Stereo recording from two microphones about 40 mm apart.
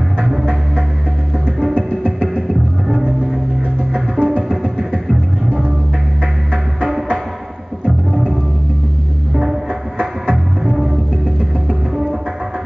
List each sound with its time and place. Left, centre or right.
1.7 s music: centre
2.9 s music: centre
4.2 s music: left
9.3 s music: centre